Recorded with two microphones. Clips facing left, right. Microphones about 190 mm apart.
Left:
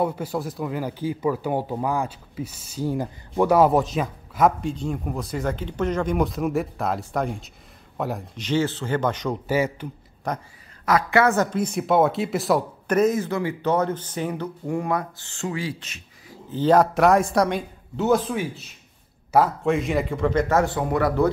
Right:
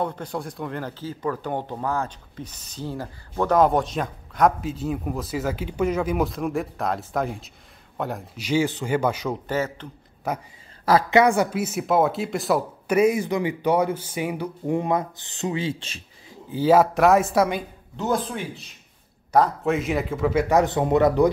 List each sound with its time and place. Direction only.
0.0 s speech: 5° left (ahead or behind)
8.5 s speech: 10° right (ahead or behind)
9.5 s speech: 10° left (ahead or behind)
10.3 s speech: 5° right (ahead or behind)
10.9 s speech: 25° right (ahead or behind)
16.5 s speech: 5° right (ahead or behind)
20.4 s speech: 20° right (ahead or behind)